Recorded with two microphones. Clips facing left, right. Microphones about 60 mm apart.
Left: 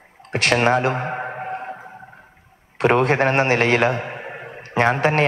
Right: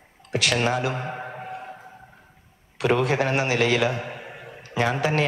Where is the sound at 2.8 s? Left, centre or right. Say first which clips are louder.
Left 5 dB; left.